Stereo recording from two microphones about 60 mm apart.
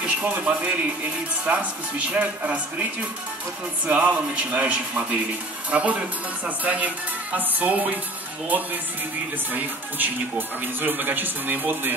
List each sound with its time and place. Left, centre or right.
0.0 s speech: right
9.5 s speech: right